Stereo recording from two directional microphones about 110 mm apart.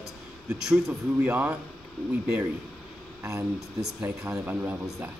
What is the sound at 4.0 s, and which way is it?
Speech, 15° right (ahead or behind).